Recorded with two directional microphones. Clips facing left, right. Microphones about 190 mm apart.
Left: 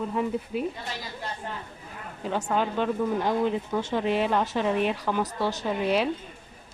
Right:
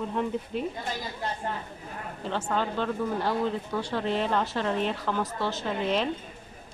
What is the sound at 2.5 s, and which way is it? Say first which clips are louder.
Speech: left 3 dB; 15° left (ahead or behind).